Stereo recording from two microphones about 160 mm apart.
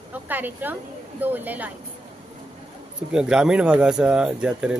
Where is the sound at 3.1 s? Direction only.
5° right (ahead or behind).